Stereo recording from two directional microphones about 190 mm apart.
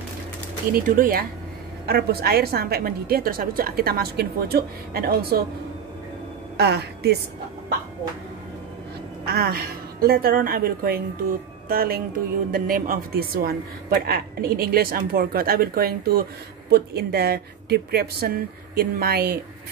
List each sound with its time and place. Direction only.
0.8 s a man's voice: 45° right (ahead or behind)
6.5 s a woman's voice: 60° right (ahead or behind)
9.2 s a man's voice: 55° right (ahead or behind)